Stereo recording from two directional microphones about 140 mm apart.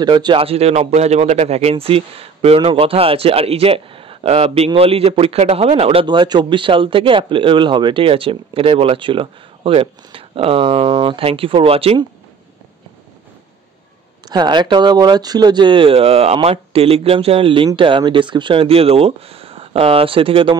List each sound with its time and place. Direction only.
0.0 s speech: 35° right (ahead or behind)
14.2 s speech: 30° right (ahead or behind)